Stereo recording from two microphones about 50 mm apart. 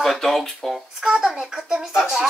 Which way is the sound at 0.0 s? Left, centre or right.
Centre.